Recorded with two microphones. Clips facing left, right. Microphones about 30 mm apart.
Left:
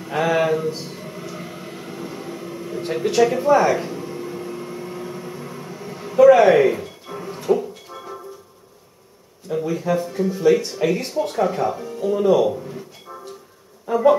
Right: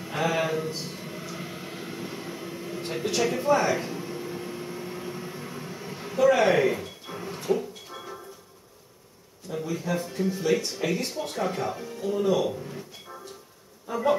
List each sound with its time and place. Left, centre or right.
0.0 s a sound: centre
6.2 s speech: centre
6.8 s music: centre
9.5 s speech: centre
10.0 s speech: centre
12.1 s speech: centre
12.4 s a sound: centre